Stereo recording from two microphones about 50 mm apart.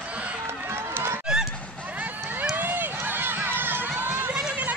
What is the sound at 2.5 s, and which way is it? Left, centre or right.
Run, right.